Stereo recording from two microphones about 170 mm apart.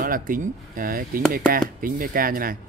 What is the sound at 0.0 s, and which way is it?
Speech, 55° right (ahead or behind).